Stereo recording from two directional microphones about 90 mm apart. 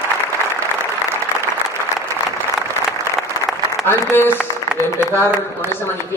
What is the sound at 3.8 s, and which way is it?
Speech, 25° left (ahead or behind).